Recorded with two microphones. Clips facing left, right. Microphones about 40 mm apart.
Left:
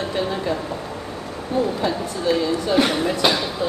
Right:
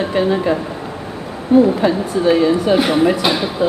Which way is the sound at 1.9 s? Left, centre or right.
Right.